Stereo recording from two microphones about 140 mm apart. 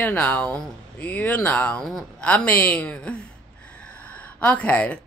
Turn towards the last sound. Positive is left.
turn(degrees=10)  # may be behind; listen again after turning